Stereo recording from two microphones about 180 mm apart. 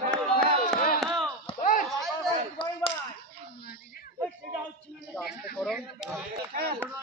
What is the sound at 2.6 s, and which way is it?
Chop, 30° left (ahead or behind).